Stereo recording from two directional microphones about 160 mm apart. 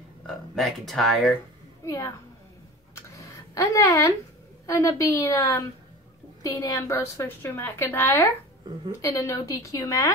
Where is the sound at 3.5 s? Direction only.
20° left (ahead or behind).